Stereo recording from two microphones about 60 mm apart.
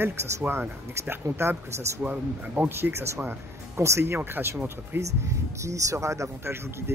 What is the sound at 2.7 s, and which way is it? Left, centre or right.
Speech, right.